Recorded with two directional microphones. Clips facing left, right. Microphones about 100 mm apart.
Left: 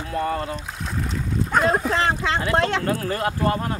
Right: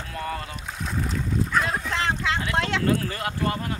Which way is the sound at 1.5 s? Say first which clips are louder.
Left 9 dB; 40° left (ahead or behind).